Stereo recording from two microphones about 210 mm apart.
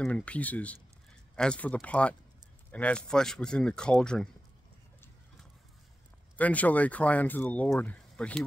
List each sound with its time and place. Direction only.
0.0 s speech: 5° left (ahead or behind)
6.3 s speech: 5° left (ahead or behind)